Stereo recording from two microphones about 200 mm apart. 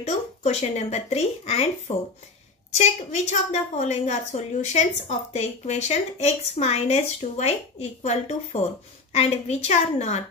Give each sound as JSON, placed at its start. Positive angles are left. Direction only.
{"t": 0.0, "sound": "a woman's voice", "side_deg": 35}